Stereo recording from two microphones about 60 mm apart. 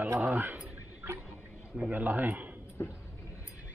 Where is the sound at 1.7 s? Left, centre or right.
Right.